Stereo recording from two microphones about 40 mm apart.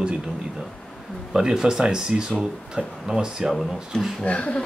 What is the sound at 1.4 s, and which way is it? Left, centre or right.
Speech, centre.